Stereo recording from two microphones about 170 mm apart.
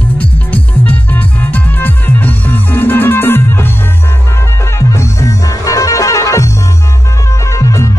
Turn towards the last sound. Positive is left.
turn(degrees=20)  # may be behind; listen again after turning